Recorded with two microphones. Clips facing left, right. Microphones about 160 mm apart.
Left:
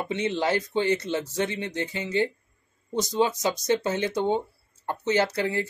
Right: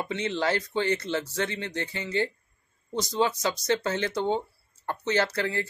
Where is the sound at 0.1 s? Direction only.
20° left (ahead or behind).